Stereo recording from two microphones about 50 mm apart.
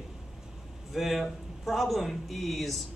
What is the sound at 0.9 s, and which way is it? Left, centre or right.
Speech, centre.